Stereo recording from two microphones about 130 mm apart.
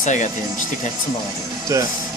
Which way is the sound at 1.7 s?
25° right (ahead or behind).